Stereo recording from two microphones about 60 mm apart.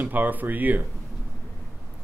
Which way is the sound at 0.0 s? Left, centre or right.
Right.